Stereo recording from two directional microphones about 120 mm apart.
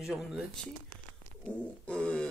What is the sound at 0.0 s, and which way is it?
Speech, centre (ahead or behind).